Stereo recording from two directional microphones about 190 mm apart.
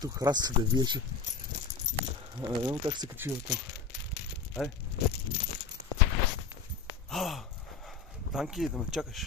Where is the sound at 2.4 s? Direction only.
20° right (ahead or behind).